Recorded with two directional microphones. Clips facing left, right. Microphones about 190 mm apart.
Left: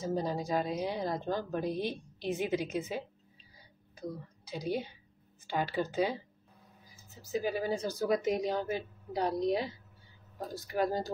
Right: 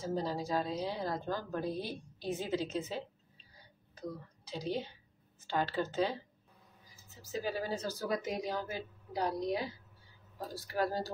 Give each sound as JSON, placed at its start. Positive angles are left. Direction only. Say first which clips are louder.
{"t": 0.0, "sound": "a woman's voice", "louder": "left 2 dB", "side_deg": 15}
{"t": 7.2, "sound": "a woman's voice", "louder": "left 4 dB", "side_deg": 15}